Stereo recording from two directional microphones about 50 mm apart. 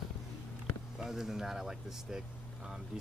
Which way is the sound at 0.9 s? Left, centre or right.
Centre.